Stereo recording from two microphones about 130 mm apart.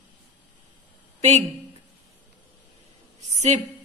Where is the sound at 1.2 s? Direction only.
60° right (ahead or behind).